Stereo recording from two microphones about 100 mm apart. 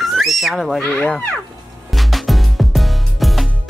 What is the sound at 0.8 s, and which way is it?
Speech, 15° left (ahead or behind).